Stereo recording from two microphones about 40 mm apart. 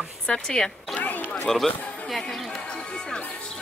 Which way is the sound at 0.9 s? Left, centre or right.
Left.